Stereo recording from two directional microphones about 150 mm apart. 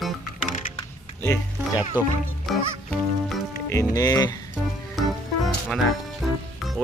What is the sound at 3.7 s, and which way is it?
Speech, 20° left (ahead or behind).